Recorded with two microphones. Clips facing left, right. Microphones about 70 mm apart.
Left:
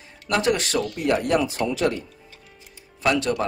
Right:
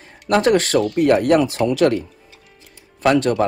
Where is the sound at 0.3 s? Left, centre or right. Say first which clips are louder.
Right 7 dB; right.